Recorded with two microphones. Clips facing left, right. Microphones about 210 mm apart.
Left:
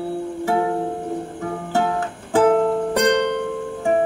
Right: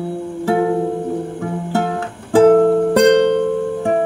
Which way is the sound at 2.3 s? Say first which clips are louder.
Right 7 dB; 55° right (ahead or behind).